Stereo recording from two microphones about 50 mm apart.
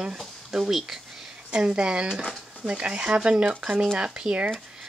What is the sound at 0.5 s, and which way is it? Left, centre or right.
Speech, centre.